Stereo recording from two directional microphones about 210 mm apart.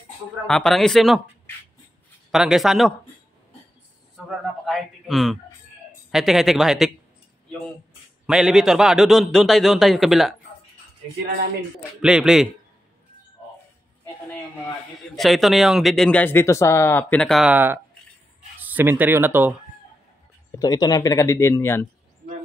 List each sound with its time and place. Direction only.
0.5 s speech: centre (ahead or behind)
2.3 s speech: centre (ahead or behind)
4.6 s speech: centre (ahead or behind)
8.3 s speech: centre (ahead or behind)
12.0 s speech: 5° right (ahead or behind)
15.1 s speech: centre (ahead or behind)
20.5 s speech: 20° left (ahead or behind)